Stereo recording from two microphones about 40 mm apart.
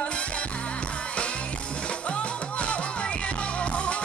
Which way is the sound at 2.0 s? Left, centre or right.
Left.